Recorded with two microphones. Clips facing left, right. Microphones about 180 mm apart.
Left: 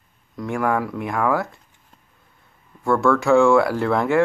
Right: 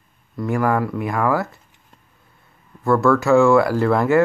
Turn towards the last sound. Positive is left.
turn(degrees=0)  # may be behind; listen again after turning